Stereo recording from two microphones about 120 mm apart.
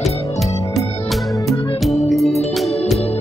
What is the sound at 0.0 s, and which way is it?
Music, centre (ahead or behind).